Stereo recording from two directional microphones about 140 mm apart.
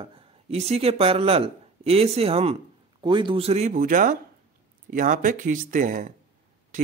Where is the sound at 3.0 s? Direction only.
35° right (ahead or behind).